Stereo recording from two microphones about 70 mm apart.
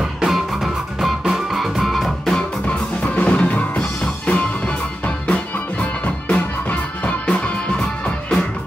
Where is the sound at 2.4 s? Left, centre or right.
Centre.